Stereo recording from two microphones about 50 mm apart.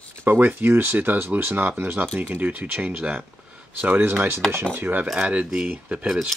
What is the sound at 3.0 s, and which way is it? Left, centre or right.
Speech, right.